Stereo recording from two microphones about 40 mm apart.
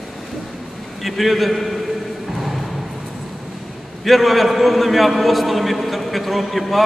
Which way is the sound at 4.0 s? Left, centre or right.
Centre.